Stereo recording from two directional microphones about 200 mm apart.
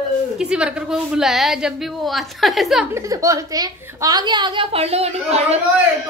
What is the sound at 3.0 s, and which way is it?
A woman's voice, 15° right (ahead or behind).